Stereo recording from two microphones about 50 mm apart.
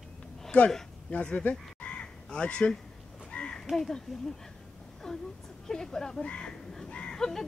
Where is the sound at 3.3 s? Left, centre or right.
Centre.